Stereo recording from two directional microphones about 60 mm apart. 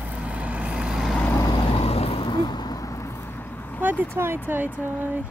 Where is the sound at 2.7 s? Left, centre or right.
Left.